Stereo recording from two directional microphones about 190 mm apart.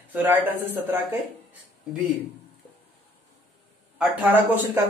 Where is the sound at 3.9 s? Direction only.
10° right (ahead or behind).